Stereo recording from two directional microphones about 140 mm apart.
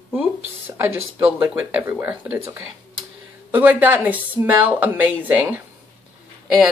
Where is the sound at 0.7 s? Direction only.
15° right (ahead or behind).